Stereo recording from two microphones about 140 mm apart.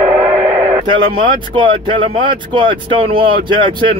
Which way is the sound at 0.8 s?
35° right (ahead or behind).